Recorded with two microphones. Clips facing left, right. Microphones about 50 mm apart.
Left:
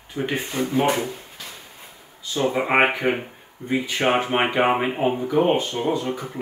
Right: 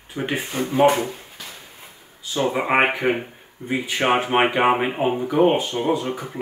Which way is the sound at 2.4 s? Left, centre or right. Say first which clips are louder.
Even; centre.